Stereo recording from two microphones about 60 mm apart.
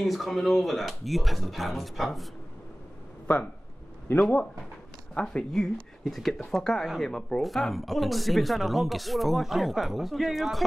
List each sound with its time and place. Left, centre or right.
0.0 s speech: centre
4.2 s speech: left
5.1 s speech: centre